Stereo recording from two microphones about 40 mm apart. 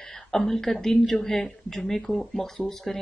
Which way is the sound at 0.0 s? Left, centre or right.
Centre.